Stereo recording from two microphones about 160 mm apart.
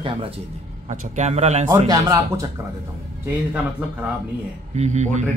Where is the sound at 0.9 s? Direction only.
45° right (ahead or behind).